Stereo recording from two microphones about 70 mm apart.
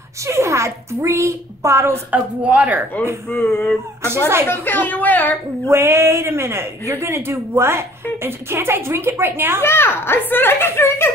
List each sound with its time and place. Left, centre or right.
0.3 s a man's voice: right
2.0 s speech: centre
3.3 s a sound: centre
4.5 s speech: left
5.7 s a man's voice: right
9.6 s a child's voice: left